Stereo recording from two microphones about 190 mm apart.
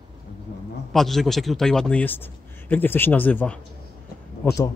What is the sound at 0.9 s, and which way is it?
A man's voice, centre (ahead or behind).